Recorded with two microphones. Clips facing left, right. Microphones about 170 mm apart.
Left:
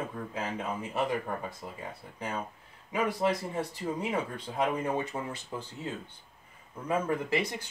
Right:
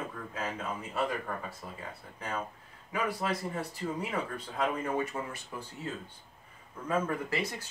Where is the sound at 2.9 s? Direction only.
20° left (ahead or behind).